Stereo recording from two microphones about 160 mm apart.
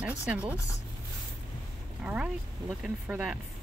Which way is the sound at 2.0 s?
5° right (ahead or behind).